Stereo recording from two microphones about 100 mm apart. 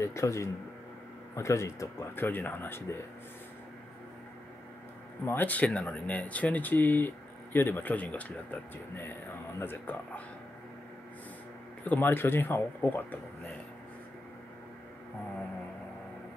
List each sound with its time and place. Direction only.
0.0 s speech: 30° left (ahead or behind)
5.2 s speech: 20° left (ahead or behind)
11.8 s speech: 20° left (ahead or behind)